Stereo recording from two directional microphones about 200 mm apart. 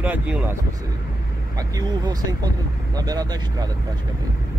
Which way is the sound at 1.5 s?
20° right (ahead or behind).